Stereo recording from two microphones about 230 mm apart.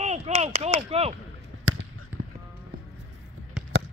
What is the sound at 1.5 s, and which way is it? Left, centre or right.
Basketball bounce, right.